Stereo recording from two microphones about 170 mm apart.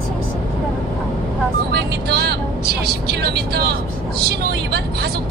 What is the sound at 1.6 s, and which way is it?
Vehicle, 70° right (ahead or behind).